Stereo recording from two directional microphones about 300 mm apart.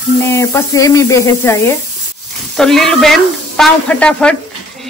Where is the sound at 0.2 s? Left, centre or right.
Centre.